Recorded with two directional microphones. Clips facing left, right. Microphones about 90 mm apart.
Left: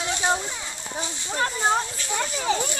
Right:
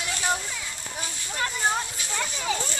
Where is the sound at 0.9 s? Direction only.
25° left (ahead or behind).